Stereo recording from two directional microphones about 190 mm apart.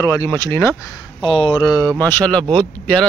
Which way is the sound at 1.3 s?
25° left (ahead or behind).